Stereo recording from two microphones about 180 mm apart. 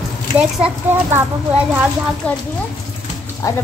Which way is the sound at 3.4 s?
20° left (ahead or behind).